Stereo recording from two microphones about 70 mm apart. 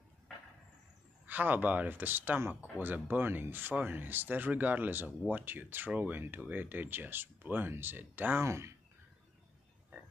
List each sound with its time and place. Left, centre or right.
1.2 s speech: right
8.5 s speech: right